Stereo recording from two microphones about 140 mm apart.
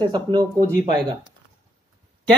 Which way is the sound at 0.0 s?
30° right (ahead or behind).